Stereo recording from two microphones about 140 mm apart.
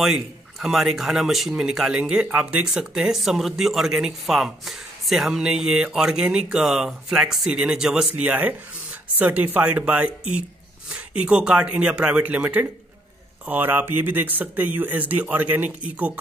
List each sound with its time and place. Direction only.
0.0 s speech: centre (ahead or behind)